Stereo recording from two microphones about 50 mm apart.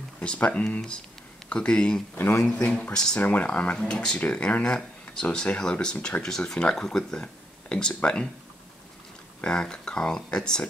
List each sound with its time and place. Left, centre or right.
0.2 s speech: left
3.2 s speech: left
9.4 s speech: centre